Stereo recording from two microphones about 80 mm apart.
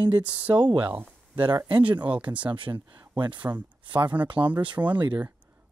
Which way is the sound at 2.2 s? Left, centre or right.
Centre.